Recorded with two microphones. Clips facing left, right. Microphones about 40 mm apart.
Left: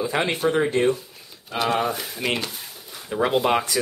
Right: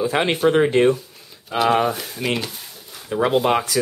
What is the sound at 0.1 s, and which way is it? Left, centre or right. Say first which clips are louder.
Speech: right 3 dB; centre.